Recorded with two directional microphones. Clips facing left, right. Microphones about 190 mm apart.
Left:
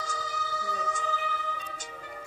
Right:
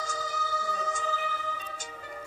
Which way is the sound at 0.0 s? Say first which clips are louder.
Right 1 dB; 45° right (ahead or behind).